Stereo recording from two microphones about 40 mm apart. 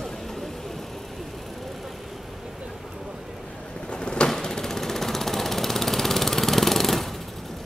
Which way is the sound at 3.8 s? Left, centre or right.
Left.